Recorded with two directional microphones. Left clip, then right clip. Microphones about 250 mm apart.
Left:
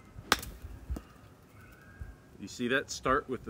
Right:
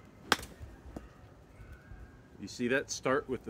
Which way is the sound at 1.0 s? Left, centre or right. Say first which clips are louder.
Left 1 dB; left.